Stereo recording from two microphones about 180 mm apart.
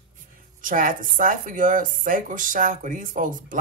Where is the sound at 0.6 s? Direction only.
50° right (ahead or behind).